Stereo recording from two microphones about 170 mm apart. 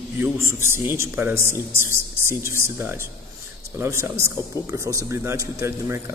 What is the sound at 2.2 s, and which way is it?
Speech, 15° left (ahead or behind).